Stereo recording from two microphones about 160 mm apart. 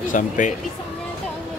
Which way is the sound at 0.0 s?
55° left (ahead or behind).